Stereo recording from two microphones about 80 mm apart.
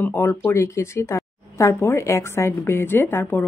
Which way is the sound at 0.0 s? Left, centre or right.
Left.